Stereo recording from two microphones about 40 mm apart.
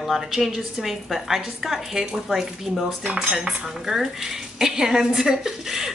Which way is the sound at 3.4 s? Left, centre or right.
Centre.